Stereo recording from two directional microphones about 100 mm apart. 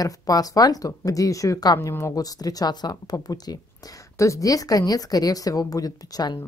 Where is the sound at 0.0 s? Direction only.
40° left (ahead or behind).